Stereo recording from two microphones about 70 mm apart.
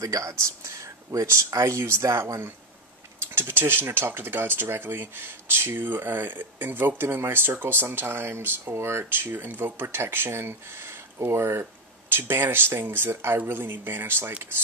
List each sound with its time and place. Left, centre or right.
0.0 s speech: right
3.3 s speech: right